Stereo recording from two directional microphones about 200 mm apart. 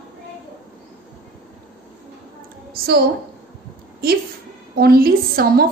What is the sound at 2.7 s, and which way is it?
Speech, 50° right (ahead or behind).